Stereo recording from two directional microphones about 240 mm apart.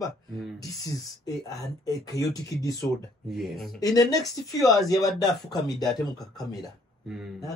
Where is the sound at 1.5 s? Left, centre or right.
Centre.